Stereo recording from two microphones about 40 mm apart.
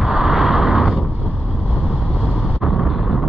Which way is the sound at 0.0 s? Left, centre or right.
Centre.